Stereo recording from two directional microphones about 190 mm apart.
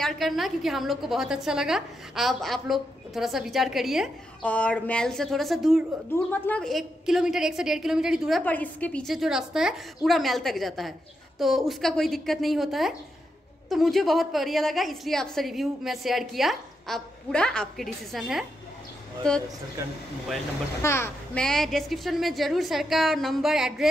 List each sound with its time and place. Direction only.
0.0 s a woman's voice: centre (ahead or behind)
6.1 s a woman's voice: 10° left (ahead or behind)
20.8 s a child's voice: 15° left (ahead or behind)
21.5 s a woman's voice: centre (ahead or behind)